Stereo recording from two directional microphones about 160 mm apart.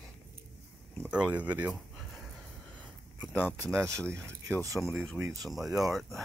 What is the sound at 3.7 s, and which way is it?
Speech, 20° right (ahead or behind).